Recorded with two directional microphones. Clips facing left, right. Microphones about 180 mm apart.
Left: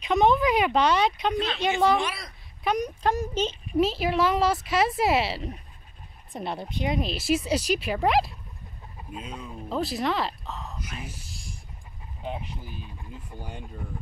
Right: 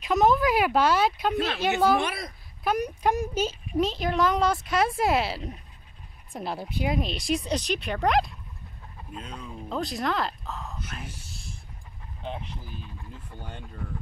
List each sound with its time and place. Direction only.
0.0 s speech: centre (ahead or behind)
2.0 s a woman's voice: 55° right (ahead or behind)
2.6 s speech: 5° right (ahead or behind)
3.7 s speech: 5° left (ahead or behind)
12.2 s speech: 5° left (ahead or behind)